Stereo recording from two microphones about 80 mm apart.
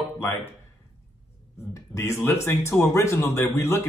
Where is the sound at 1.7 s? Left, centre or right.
Left.